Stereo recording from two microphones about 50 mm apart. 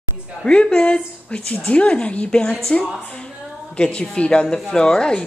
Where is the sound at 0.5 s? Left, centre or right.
Centre.